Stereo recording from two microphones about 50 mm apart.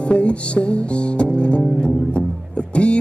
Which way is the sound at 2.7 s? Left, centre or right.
Left.